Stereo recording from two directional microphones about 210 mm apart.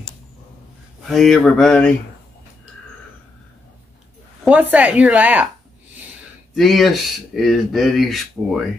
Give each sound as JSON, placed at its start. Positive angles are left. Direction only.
{"t": 1.0, "sound": "speech", "side_deg": 0}
{"t": 4.5, "sound": "speech", "side_deg": -5}
{"t": 6.5, "sound": "speech", "side_deg": 0}